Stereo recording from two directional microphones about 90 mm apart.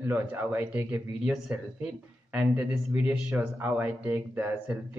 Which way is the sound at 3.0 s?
20° right (ahead or behind).